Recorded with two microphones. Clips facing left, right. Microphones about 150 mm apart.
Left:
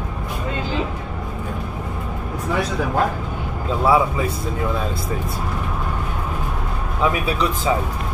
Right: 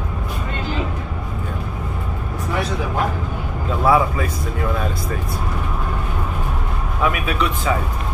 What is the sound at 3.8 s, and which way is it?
Speech, 20° left (ahead or behind).